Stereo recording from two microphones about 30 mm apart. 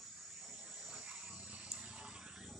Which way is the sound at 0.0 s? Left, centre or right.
Right.